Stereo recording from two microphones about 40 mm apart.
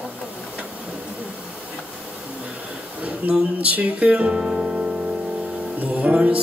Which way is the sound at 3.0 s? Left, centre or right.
Right.